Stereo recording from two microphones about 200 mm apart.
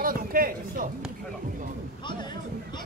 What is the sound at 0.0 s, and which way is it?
Speech, 45° right (ahead or behind).